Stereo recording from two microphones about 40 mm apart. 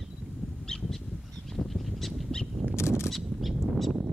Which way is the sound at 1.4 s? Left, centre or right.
Centre.